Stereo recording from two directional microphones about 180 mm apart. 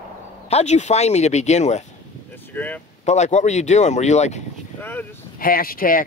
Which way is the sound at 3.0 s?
40° left (ahead or behind).